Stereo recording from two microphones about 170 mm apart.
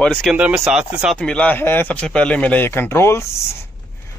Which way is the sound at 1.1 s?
5° left (ahead or behind).